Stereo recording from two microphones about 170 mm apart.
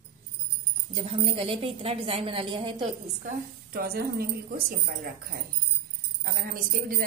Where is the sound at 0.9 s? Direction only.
35° right (ahead or behind).